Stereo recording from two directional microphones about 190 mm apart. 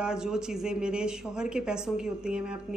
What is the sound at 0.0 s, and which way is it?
A woman's voice, 5° right (ahead or behind).